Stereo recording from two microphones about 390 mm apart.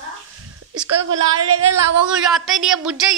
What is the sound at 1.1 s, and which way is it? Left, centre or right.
Speech, right.